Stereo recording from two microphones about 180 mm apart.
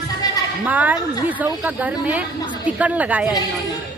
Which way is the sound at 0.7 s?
10° right (ahead or behind).